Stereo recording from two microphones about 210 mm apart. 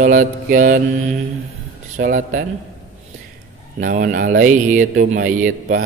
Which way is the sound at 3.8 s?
40° right (ahead or behind).